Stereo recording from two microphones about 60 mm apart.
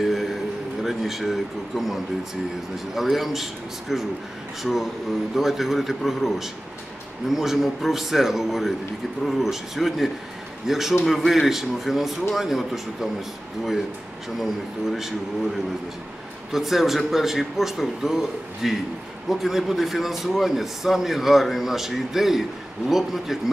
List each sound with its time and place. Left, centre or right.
0.0 s a sound: centre
0.8 s speech: centre
3.0 s a man's voice: centre
5.3 s a man's voice: centre
14.4 s a man's voice: centre
16.5 s a man's voice: centre